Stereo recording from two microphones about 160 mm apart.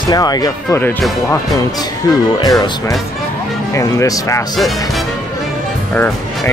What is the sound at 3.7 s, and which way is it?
Speech, 20° left (ahead or behind).